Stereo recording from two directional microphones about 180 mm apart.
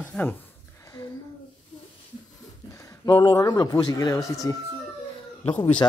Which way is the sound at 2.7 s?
20° left (ahead or behind).